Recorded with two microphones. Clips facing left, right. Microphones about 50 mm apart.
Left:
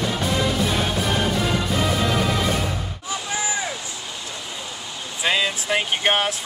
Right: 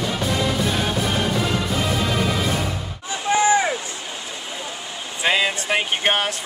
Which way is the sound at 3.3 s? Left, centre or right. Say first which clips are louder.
Right 11 dB; right.